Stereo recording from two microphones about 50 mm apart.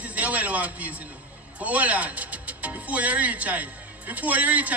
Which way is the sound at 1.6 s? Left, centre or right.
Right.